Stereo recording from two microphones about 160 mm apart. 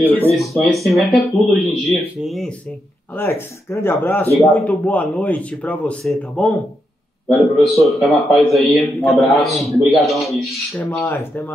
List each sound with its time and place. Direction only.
0.0 s speech: 10° left (ahead or behind)
0.6 s a man's voice: centre (ahead or behind)
3.2 s a man's voice: 15° left (ahead or behind)
11.1 s speech: 15° left (ahead or behind)